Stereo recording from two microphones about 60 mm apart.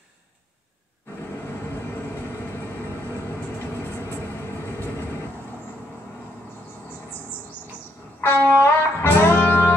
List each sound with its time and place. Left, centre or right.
8.2 s music: left